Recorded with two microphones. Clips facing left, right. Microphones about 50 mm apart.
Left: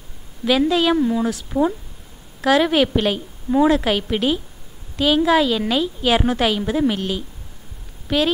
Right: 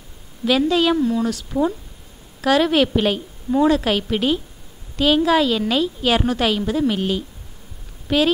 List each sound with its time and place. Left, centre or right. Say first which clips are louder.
0.5 s a woman's voice: even; centre
0.9 s a woman's voice: left 1 dB; centre
8.1 s a woman's voice: right 1 dB; centre